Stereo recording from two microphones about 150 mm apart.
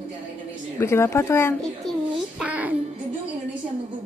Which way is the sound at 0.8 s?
15° left (ahead or behind).